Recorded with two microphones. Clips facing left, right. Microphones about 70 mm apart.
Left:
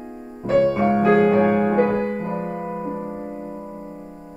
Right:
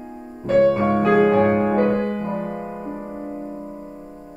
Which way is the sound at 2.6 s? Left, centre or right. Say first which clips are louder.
Left 3 dB; centre.